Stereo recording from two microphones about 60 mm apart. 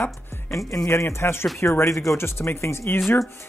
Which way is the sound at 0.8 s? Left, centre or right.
Left.